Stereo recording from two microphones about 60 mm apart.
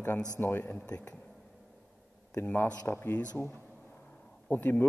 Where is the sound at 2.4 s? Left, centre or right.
Left.